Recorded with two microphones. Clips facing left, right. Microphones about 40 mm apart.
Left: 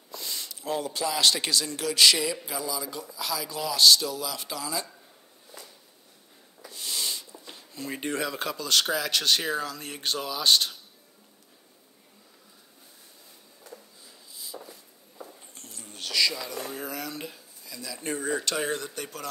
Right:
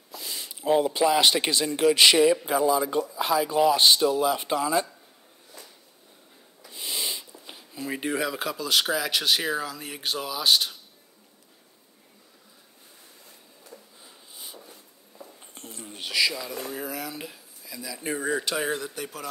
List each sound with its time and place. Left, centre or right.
0.1 s a sound: centre
0.5 s speech: right
6.7 s snort: right
7.4 s speech: centre
14.0 s sniff: right
15.4 s a sound: right; by 16.6 s centre
16.6 s speech: centre